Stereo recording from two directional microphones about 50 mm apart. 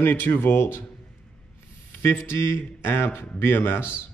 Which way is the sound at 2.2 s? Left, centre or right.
Left.